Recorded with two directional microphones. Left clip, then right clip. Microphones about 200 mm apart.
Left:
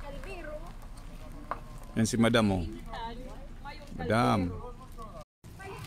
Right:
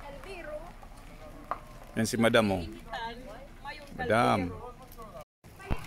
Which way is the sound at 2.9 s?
45° right (ahead or behind).